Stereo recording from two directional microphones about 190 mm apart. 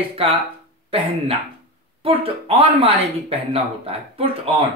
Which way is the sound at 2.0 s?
30° right (ahead or behind).